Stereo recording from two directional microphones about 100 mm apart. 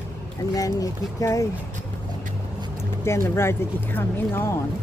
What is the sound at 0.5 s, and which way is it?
Speech, 35° left (ahead or behind).